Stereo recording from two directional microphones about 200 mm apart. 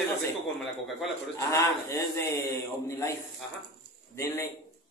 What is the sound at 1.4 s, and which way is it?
A man's voice, 15° left (ahead or behind).